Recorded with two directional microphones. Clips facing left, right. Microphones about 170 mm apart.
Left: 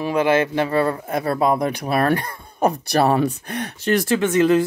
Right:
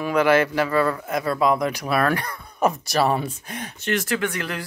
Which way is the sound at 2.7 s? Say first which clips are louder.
Left 3 dB; 60° left (ahead or behind).